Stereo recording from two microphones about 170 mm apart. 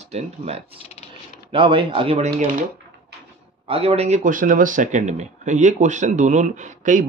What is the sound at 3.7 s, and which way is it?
Speech, 35° right (ahead or behind).